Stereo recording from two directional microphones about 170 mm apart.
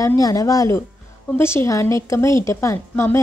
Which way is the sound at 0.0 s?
20° left (ahead or behind).